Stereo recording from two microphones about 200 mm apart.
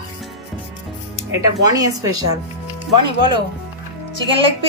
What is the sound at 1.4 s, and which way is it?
Speech, 20° right (ahead or behind).